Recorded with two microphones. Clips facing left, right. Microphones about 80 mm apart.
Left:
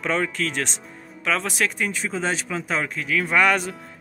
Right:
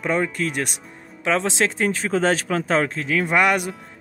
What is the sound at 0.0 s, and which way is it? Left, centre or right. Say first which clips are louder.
Speech: right 2 dB; centre.